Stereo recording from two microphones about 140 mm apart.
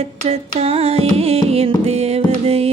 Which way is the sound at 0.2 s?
45° right (ahead or behind).